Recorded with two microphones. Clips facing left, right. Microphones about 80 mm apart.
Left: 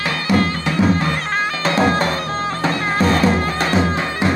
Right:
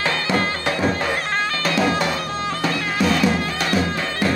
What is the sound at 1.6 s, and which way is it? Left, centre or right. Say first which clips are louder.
Music: left 4 dB; left.